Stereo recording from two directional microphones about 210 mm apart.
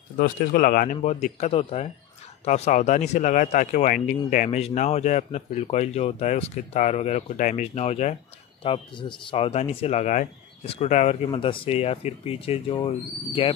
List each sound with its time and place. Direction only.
0.2 s speech: 40° left (ahead or behind)
0.9 s speech: 30° left (ahead or behind)